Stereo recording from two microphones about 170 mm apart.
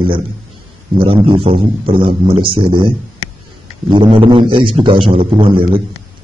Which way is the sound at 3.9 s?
30° right (ahead or behind).